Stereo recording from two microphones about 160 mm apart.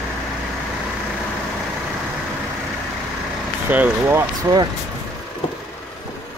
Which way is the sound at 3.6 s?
10° right (ahead or behind).